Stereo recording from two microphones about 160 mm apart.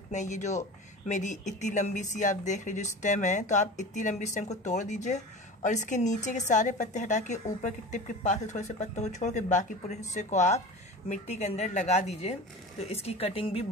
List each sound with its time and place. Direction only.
0.1 s speech: 50° left (ahead or behind)